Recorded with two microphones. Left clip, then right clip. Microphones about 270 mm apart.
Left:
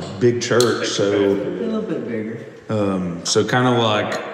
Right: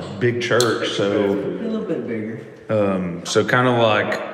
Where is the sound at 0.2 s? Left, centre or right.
Centre.